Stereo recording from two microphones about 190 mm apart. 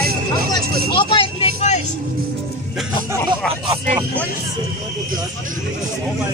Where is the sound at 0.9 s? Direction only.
25° left (ahead or behind).